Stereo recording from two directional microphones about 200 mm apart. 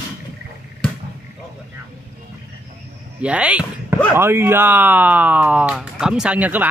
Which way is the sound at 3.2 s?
5° right (ahead or behind).